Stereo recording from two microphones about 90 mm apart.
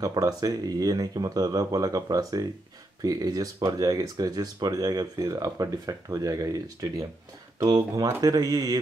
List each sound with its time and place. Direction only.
0.0 s speech: 45° right (ahead or behind)